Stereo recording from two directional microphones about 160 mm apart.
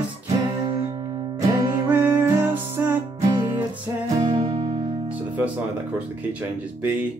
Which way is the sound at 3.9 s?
15° right (ahead or behind).